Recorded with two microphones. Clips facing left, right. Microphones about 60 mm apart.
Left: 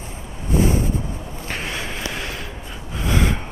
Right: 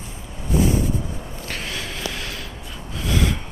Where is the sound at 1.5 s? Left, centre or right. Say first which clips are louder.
Left 3 dB; left.